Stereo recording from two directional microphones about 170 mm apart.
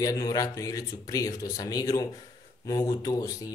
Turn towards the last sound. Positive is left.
turn(degrees=20)  # may be behind; listen again after turning